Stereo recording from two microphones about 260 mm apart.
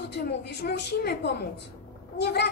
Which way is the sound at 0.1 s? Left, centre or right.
Left.